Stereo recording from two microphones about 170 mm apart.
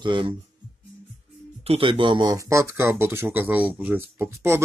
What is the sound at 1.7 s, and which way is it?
Speech, 30° right (ahead or behind).